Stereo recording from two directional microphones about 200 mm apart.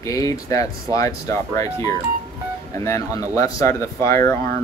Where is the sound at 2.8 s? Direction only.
15° left (ahead or behind).